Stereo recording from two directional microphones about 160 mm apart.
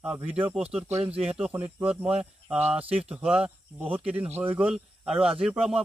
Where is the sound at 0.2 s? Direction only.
35° right (ahead or behind).